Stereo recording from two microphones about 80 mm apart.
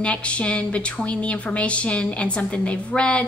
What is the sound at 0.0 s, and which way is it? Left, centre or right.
Speech, centre.